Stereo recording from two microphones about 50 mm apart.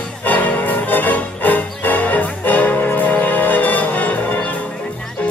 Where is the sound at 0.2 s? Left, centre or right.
Left.